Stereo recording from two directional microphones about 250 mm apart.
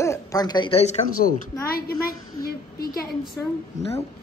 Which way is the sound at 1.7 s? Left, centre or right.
Left.